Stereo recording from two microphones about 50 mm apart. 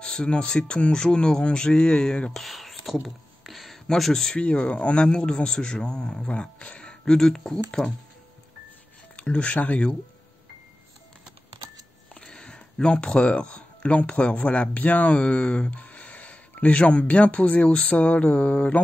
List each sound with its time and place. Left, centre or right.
0.0 s speech: centre
2.3 s a sound: centre
4.5 s speech: left
9.1 s speech: left
12.1 s speech: centre